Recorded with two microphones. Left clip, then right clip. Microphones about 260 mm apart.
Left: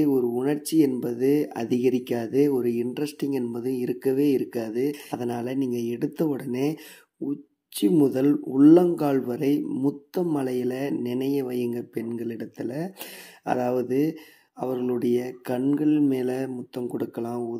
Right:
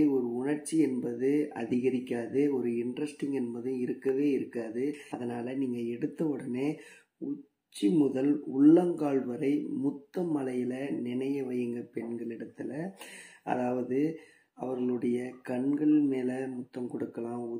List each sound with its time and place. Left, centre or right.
0.0 s speech: left
7.7 s speech: left